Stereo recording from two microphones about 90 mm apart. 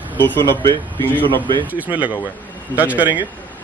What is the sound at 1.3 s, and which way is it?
Speech, 60° right (ahead or behind).